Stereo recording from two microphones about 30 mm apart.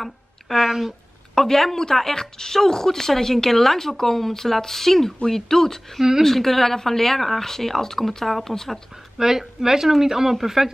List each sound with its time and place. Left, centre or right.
0.0 s a sound: centre
0.7 s speech: centre
1.3 s speech: centre
9.2 s speech: centre